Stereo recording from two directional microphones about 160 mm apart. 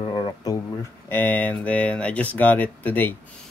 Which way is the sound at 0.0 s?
30° left (ahead or behind).